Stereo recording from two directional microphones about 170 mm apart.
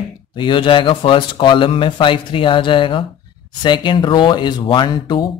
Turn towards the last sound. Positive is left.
turn(degrees=25)  # may be behind; listen again after turning